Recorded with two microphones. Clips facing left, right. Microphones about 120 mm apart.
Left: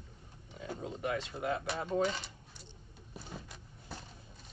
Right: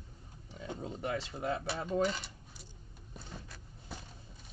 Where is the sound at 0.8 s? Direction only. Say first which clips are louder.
Left 1 dB; 35° right (ahead or behind).